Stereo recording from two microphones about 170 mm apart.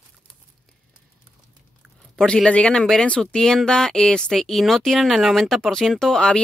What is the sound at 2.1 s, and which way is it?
Speech, 5° left (ahead or behind).